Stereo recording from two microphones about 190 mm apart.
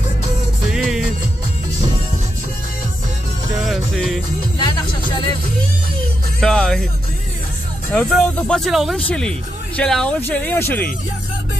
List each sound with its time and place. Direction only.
0.7 s music: centre (ahead or behind)
3.6 s music: centre (ahead or behind)
4.6 s music: 25° left (ahead or behind)
6.4 s speech: 5° left (ahead or behind)
7.9 s speech: centre (ahead or behind)